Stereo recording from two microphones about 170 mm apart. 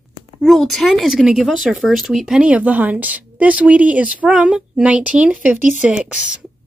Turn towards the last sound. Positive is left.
turn(degrees=-5)  # may be behind; listen again after turning